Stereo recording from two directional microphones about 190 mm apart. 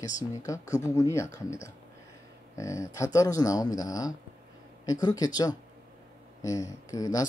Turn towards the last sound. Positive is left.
turn(degrees=20)  # may be behind; listen again after turning